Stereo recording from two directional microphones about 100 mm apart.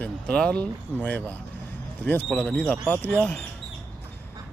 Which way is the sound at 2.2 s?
5° left (ahead or behind).